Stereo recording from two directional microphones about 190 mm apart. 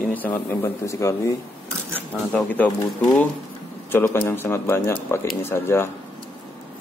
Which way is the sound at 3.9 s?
10° left (ahead or behind).